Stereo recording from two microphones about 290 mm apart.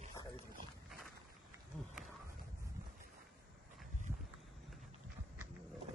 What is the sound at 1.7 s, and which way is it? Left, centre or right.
Roaring cats, centre.